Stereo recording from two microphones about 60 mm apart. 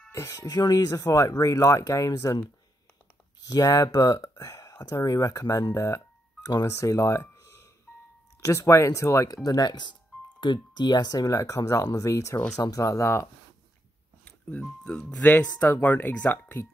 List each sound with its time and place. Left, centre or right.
0.1 s speech: left
3.4 s speech: left
5.0 s speech: left
6.4 s speech: left
11.1 s speech: left
14.2 s music: left
14.8 s speech: centre